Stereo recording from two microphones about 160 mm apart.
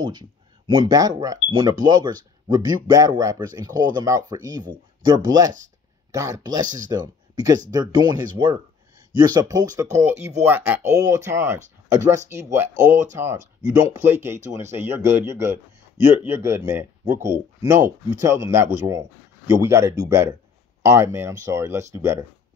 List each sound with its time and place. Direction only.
0.0 s speech: 25° right (ahead or behind)
12.9 s speech: 50° right (ahead or behind)
13.6 s speech: 20° right (ahead or behind)